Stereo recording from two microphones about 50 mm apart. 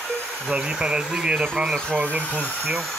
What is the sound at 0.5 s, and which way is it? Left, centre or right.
Speech, centre.